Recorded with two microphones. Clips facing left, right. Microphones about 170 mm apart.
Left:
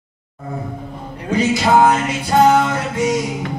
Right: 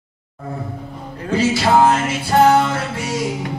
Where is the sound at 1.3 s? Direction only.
20° left (ahead or behind).